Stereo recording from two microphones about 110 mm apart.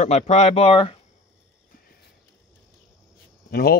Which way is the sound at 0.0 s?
90° left.